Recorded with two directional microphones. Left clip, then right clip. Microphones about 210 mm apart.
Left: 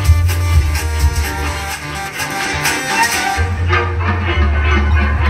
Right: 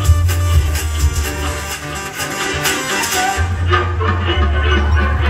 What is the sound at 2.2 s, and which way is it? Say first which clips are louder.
Music: left 1 dB; 30° left (ahead or behind).